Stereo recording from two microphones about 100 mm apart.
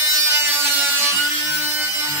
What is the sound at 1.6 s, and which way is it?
Sawing, 25° right (ahead or behind).